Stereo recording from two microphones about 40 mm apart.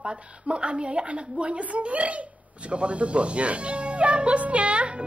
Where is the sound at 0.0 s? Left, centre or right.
Right.